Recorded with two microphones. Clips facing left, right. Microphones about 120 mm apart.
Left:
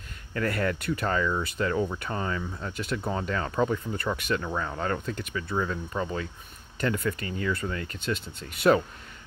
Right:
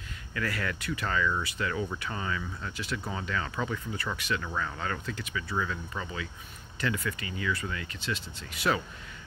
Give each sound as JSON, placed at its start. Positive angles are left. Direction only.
{"t": 0.3, "sound": "speech", "side_deg": 45}
{"t": 1.0, "sound": "speech", "side_deg": 35}
{"t": 1.4, "sound": "speech", "side_deg": 50}
{"t": 2.0, "sound": "speech", "side_deg": 35}
{"t": 2.7, "sound": "speech", "side_deg": 50}
{"t": 3.1, "sound": "speech", "side_deg": 40}
{"t": 4.4, "sound": "speech", "side_deg": 30}
{"t": 5.5, "sound": "speech", "side_deg": 30}